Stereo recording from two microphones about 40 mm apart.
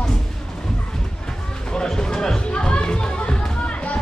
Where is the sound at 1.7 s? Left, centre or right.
Centre.